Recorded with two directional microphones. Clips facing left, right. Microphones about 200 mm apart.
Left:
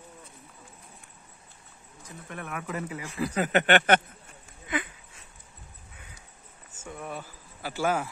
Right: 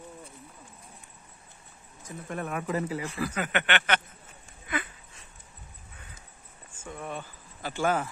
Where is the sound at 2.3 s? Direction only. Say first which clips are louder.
Right 5 dB; 30° right (ahead or behind).